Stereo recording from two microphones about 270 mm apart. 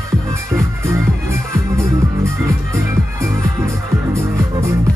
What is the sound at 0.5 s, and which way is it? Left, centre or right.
Music, centre.